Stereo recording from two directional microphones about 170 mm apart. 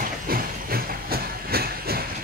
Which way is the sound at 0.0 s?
60° right (ahead or behind).